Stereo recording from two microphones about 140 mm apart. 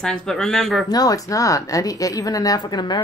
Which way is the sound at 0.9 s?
25° left (ahead or behind).